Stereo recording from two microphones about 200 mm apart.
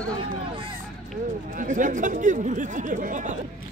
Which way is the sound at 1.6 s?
40° right (ahead or behind).